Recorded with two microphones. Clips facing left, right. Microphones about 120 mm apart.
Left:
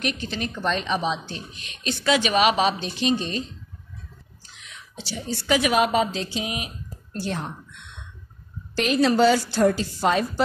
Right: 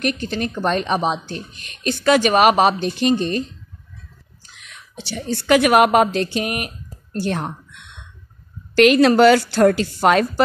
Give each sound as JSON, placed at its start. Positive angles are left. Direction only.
{"t": 0.0, "sound": "a woman's voice", "side_deg": -50}
{"t": 4.6, "sound": "a woman's voice", "side_deg": -60}
{"t": 8.7, "sound": "a woman's voice", "side_deg": -75}